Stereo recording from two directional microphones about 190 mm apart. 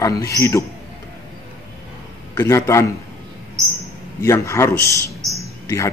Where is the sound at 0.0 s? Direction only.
15° left (ahead or behind).